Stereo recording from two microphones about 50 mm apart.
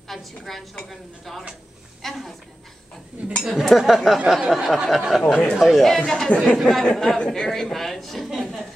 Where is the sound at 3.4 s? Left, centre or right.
Centre.